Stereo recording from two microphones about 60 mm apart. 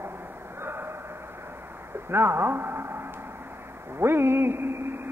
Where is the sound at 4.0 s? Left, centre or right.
Right.